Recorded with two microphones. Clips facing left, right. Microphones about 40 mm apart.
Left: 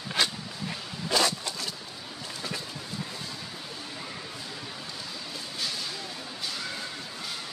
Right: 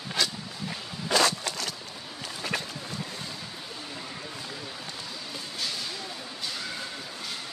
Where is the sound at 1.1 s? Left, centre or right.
Right.